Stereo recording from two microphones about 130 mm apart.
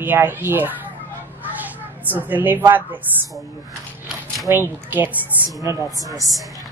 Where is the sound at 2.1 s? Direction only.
15° right (ahead or behind).